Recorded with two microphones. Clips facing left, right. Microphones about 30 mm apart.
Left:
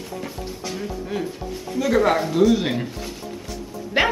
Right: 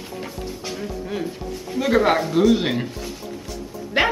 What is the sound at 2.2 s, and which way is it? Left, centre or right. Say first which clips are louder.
Speech: even; centre.